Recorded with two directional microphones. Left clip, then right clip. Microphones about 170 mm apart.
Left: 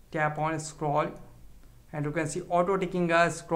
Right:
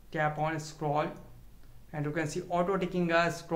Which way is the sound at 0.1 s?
30° left (ahead or behind).